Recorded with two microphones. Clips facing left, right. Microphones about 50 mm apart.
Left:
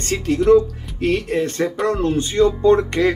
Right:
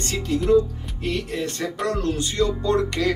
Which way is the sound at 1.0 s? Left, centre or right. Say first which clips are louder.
Left 8 dB; left.